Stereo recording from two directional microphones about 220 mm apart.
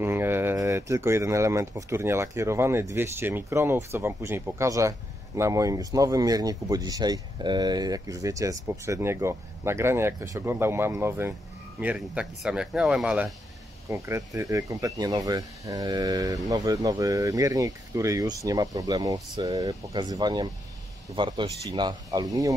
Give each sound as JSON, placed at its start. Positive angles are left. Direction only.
{"t": 0.0, "sound": "speech", "side_deg": -10}